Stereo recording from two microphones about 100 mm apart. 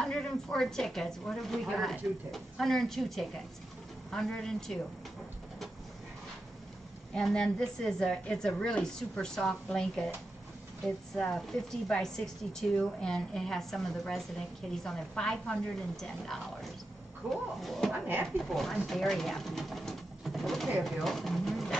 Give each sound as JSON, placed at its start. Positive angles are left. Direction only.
{"t": 0.0, "sound": "a woman's voice", "side_deg": 5}
{"t": 7.2, "sound": "a woman's voice", "side_deg": 10}
{"t": 11.1, "sound": "a woman's voice", "side_deg": 5}
{"t": 17.2, "sound": "speech", "side_deg": -10}
{"t": 17.6, "sound": "a woman's voice", "side_deg": 0}
{"t": 17.9, "sound": "speech", "side_deg": -20}
{"t": 18.5, "sound": "a woman's voice", "side_deg": 0}